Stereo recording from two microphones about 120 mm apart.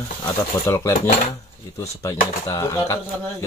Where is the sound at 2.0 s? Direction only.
30° left (ahead or behind).